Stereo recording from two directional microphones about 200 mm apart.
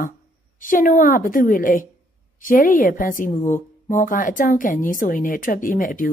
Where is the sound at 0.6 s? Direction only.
40° left (ahead or behind).